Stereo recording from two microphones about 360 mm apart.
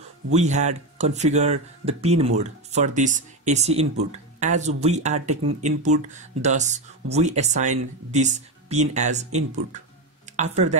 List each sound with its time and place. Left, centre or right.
0.3 s speech: centre